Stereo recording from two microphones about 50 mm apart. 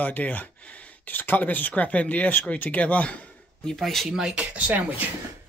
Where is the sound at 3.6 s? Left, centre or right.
Centre.